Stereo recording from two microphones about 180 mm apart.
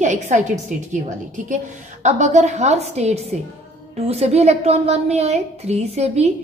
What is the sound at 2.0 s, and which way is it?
A woman's voice, 40° right (ahead or behind).